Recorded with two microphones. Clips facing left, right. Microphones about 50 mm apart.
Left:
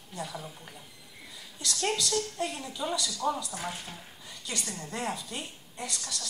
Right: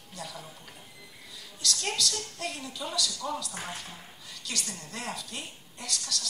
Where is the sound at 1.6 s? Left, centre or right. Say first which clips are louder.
Left 1 dB; left.